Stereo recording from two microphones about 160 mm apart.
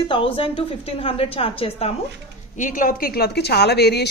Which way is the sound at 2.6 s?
55° left (ahead or behind).